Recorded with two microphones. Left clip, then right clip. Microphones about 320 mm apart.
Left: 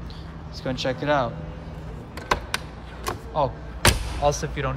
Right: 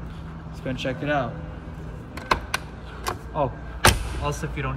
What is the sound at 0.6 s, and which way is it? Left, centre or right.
Speech, left.